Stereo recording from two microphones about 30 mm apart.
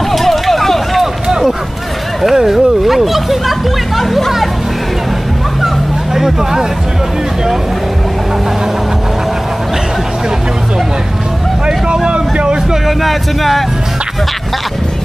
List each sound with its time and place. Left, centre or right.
0.1 s run: centre
2.3 s speech: centre
4.0 s speech: centre
6.1 s speech: centre
11.6 s vehicle: right
12.8 s speech: centre